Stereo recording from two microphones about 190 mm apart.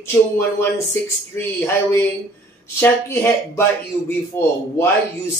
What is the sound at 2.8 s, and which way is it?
Speech, 10° left (ahead or behind).